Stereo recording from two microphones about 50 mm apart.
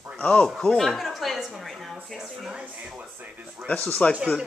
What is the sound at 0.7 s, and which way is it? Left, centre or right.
A child's voice, centre.